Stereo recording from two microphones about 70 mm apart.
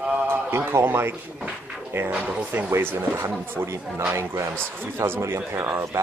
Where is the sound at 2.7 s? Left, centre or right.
Right.